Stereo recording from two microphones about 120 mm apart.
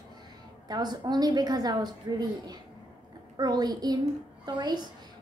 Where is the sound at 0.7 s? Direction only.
35° right (ahead or behind).